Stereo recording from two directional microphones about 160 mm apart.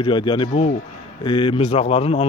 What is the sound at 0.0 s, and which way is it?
Speech, 30° left (ahead or behind).